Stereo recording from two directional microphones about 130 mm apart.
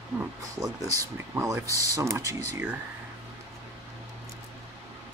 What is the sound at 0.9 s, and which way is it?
Speech, 25° right (ahead or behind).